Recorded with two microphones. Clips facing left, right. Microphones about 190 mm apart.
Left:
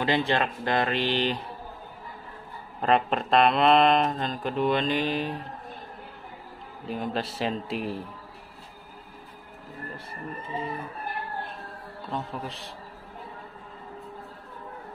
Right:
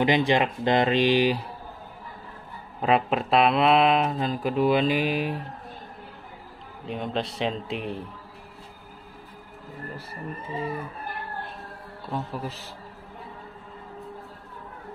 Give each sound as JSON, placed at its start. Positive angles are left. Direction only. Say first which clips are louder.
{"t": 0.0, "sound": "speech", "louder": "right 4 dB", "side_deg": -15}
{"t": 2.8, "sound": "speech", "louder": "right 1 dB", "side_deg": -5}
{"t": 6.9, "sound": "speech", "louder": "right 1 dB", "side_deg": 5}
{"t": 12.1, "sound": "speech", "louder": "right 2 dB", "side_deg": -5}